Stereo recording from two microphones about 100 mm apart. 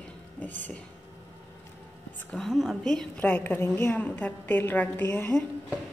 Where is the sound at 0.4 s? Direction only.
15° left (ahead or behind).